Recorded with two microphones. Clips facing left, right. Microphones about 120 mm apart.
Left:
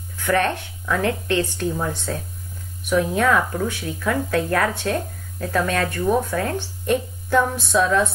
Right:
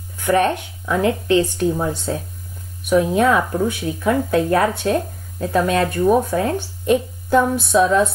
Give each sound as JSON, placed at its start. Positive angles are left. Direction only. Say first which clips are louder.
{"t": 0.2, "sound": "speech", "louder": "right 4 dB", "side_deg": -15}